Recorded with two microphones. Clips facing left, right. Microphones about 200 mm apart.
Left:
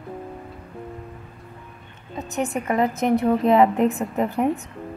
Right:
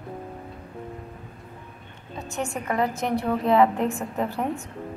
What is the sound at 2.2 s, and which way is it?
A woman's voice, 20° left (ahead or behind).